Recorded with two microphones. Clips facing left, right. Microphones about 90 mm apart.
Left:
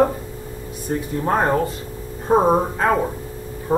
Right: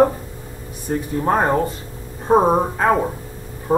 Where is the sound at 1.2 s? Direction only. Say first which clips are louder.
Right 1 dB; 10° right (ahead or behind).